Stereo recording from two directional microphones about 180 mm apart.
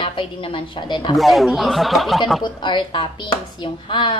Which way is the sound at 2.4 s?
25° left (ahead or behind).